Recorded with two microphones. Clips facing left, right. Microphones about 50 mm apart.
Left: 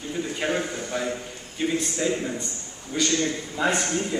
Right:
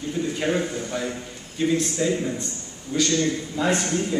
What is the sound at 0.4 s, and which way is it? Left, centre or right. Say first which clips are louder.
A man's voice: right 1 dB; centre.